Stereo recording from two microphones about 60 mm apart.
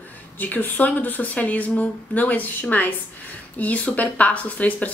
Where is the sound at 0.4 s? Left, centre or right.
Left.